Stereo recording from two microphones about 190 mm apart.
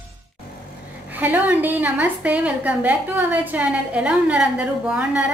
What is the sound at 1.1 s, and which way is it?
A woman's voice, 10° right (ahead or behind).